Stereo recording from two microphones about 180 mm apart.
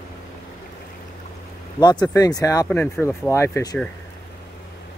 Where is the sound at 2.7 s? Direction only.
10° left (ahead or behind).